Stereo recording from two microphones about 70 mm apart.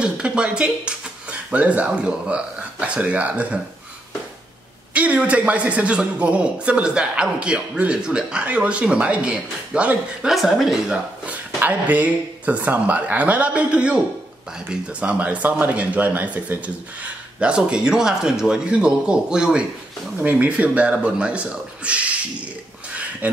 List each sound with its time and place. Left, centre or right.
0.0 s speech: centre
4.9 s speech: centre
10.3 s speech: centre
11.2 s speech: right
23.2 s speech: right